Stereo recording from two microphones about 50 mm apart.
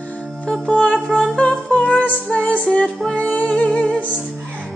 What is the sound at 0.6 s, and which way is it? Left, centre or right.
Music, left.